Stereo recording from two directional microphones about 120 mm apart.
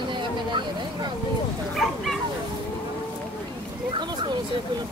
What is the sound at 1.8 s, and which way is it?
Bow-wow, centre (ahead or behind).